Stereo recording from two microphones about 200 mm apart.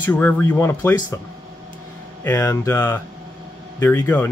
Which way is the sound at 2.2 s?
15° left (ahead or behind).